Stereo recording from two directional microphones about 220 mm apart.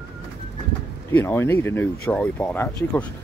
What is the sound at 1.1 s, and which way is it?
Speech, 10° left (ahead or behind).